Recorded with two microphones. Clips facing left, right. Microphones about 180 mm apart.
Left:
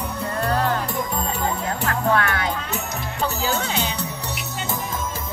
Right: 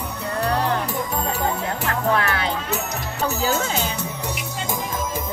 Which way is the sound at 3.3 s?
45° right (ahead or behind).